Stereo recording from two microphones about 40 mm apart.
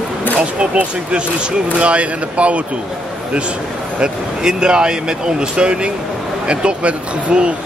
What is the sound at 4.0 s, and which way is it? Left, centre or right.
Speech, right.